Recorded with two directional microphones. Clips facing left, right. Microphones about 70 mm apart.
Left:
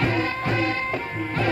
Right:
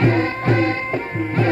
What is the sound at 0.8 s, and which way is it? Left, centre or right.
Music, right.